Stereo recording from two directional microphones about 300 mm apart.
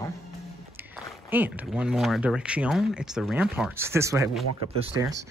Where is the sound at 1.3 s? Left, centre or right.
Centre.